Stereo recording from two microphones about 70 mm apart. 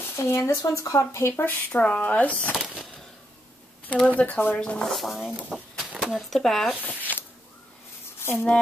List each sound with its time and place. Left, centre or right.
0.0 s speech: left
0.6 s speech: left
1.3 s speech: left
1.7 s speech: centre
4.2 s speech: left
4.6 s speech: centre
4.9 s speech: centre
6.7 s speech: left
8.2 s a sound: left